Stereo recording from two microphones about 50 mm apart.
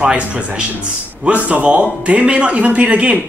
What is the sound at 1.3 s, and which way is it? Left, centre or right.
Speech, right.